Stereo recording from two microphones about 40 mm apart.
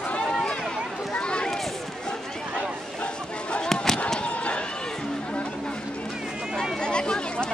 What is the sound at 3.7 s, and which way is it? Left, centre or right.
Fireworks, centre.